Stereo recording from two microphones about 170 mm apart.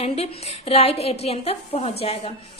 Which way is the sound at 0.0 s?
35° left (ahead or behind).